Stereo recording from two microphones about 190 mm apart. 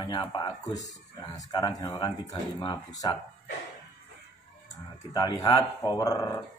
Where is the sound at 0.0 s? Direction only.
25° left (ahead or behind).